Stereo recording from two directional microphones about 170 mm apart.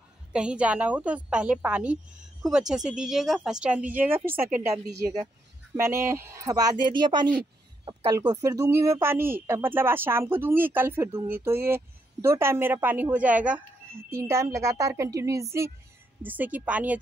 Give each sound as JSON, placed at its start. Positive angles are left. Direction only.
{"t": 0.3, "sound": "speech", "side_deg": -5}
{"t": 5.8, "sound": "a man's voice", "side_deg": -15}